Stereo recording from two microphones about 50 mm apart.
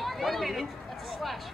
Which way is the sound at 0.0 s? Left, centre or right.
Centre.